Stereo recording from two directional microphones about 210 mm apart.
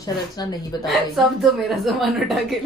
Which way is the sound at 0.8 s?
Centre (ahead or behind).